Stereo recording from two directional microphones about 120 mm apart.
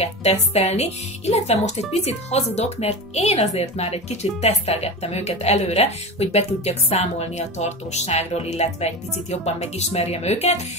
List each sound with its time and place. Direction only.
0.0 s speech: 60° left (ahead or behind)